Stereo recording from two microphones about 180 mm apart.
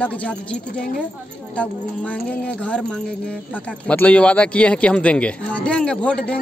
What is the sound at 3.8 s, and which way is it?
Speech, 5° left (ahead or behind).